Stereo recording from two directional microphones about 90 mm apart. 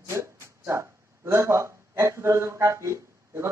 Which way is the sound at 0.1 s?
30° right (ahead or behind).